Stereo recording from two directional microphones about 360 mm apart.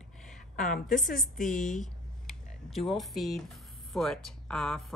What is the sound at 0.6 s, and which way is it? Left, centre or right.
Speech, left.